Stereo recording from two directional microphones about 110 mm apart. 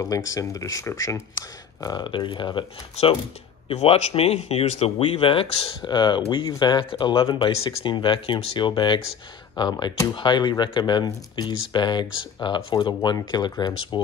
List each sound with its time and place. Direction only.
0.0 s speech: 30° left (ahead or behind); by 3.2 s 50° left (ahead or behind)
3.6 s speech: 60° left (ahead or behind); by 14.0 s 45° left (ahead or behind)